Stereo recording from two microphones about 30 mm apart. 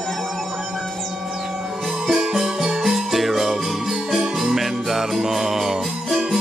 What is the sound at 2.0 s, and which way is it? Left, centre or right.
Music, centre.